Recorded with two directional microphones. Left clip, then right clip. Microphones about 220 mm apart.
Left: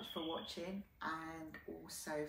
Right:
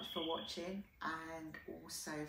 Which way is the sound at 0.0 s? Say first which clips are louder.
Right 2 dB; centre (ahead or behind).